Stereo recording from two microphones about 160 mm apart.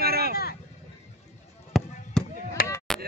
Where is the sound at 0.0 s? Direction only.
70° right (ahead or behind).